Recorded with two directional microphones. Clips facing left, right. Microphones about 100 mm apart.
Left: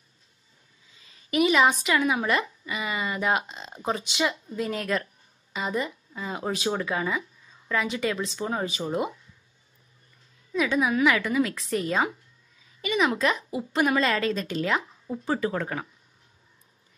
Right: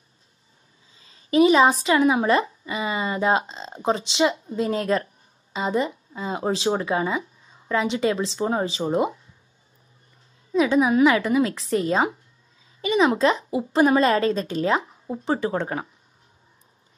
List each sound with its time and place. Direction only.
0.9 s speech: 30° right (ahead or behind)
10.5 s a woman's voice: 25° right (ahead or behind)